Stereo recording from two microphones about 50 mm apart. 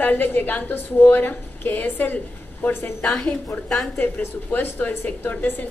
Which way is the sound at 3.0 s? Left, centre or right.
Centre.